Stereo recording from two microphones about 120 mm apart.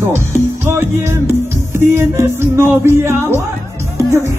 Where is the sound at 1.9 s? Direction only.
20° right (ahead or behind).